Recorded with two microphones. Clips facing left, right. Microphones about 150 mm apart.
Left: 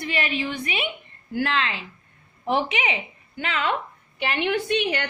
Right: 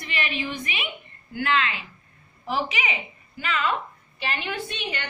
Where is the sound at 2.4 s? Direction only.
60° left (ahead or behind).